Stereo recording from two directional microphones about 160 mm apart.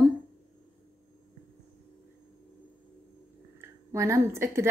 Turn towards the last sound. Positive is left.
turn(degrees=-15)  # may be behind; listen again after turning